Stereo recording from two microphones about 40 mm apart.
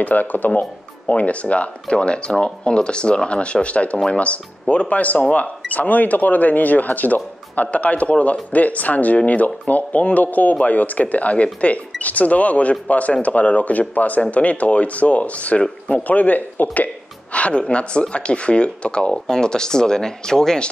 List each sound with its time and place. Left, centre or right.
0.0 s speech: left
0.5 s speech: left; by 20.6 s centre